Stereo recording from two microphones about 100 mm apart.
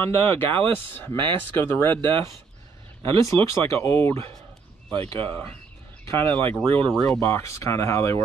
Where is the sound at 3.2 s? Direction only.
25° left (ahead or behind).